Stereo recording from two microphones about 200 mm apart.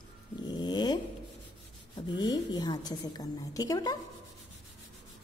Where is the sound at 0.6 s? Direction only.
20° left (ahead or behind).